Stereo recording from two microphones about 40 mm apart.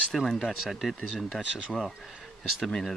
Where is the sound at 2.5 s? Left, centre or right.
Centre.